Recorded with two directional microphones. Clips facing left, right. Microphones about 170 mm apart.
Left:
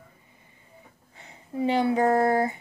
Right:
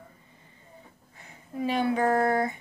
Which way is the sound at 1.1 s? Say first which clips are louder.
Left 4 dB; 25° left (ahead or behind).